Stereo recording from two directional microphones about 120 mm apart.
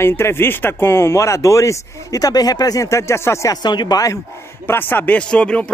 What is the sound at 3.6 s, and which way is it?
Speech, 35° left (ahead or behind).